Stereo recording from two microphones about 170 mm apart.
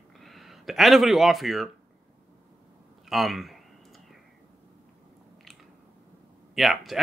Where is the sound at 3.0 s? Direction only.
Centre (ahead or behind).